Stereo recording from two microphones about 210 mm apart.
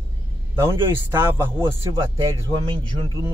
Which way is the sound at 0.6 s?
10° right (ahead or behind).